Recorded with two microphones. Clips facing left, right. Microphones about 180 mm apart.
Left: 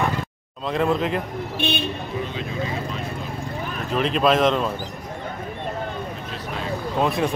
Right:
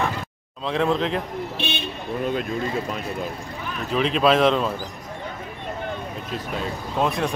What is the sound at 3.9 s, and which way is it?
Speech, centre (ahead or behind).